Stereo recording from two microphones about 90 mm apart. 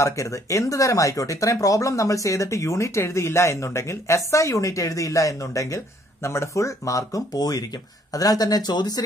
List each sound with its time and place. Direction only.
0.0 s speech: 35° left (ahead or behind); by 9.0 s 50° left (ahead or behind)